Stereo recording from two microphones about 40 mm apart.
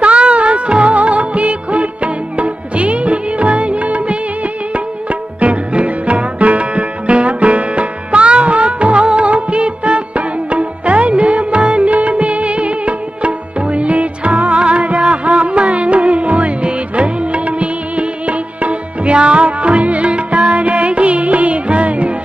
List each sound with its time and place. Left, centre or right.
0.3 s music of bollywood: right
5.4 s music: right